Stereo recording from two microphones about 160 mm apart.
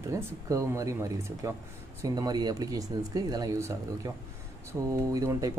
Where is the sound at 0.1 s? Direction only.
20° right (ahead or behind).